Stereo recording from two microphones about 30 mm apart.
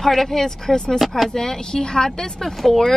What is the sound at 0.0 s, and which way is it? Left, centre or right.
Speech, centre.